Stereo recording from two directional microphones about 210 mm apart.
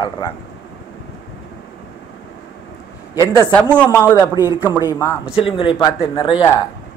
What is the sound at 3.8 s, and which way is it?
Speech, 10° left (ahead or behind).